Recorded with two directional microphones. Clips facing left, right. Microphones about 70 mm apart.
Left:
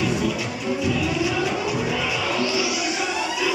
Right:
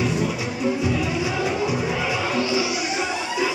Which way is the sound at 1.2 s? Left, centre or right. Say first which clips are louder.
Even; right.